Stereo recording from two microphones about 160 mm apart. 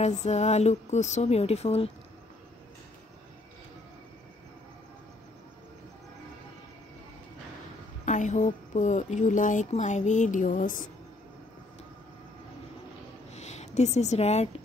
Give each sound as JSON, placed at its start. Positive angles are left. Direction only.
{"t": 0.0, "sound": "speech", "side_deg": 45}
{"t": 8.0, "sound": "speech", "side_deg": 50}
{"t": 13.3, "sound": "speech", "side_deg": 45}